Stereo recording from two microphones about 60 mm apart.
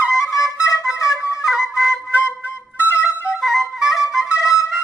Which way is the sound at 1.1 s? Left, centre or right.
Centre.